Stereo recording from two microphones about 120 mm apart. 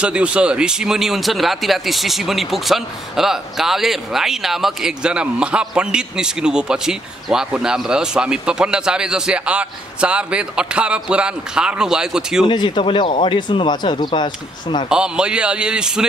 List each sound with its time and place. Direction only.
0.0 s speech: 10° right (ahead or behind)
12.4 s speech: 40° left (ahead or behind)
14.9 s a man's voice: 5° right (ahead or behind)